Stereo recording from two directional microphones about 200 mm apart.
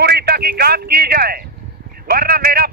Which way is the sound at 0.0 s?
55° right (ahead or behind).